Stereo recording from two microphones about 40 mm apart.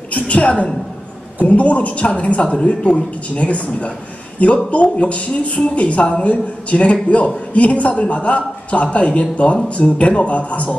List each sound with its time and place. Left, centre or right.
0.1 s a man's voice: left